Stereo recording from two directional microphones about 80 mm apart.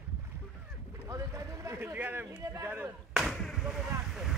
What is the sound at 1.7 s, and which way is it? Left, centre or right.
Speech, right.